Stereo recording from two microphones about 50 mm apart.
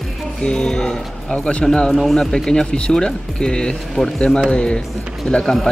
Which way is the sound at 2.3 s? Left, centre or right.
Centre.